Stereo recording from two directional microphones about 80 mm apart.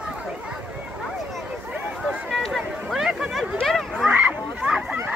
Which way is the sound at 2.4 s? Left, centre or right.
Centre.